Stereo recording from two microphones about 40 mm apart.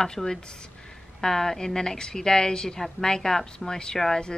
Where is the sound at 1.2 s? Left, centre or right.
Centre.